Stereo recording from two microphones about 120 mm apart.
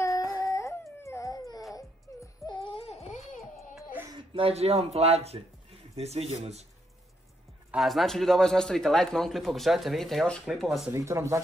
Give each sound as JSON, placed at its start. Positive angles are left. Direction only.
{"t": 0.0, "sound": "dog", "side_deg": 30}
{"t": 0.4, "sound": "a sound", "side_deg": 25}
{"t": 2.4, "sound": "music", "side_deg": 45}
{"t": 4.1, "sound": "speech", "side_deg": -45}
{"t": 7.7, "sound": "speech", "side_deg": 0}
{"t": 10.9, "sound": "speech", "side_deg": -25}